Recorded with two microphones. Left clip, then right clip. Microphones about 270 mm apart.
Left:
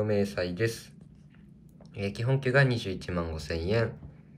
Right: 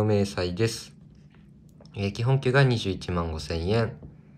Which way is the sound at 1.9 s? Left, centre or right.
Centre.